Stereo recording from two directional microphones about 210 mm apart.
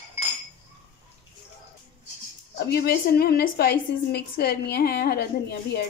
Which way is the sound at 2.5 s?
50° left (ahead or behind).